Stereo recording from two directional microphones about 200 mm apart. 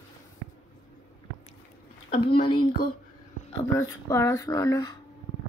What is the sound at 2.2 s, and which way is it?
Speech, 25° left (ahead or behind).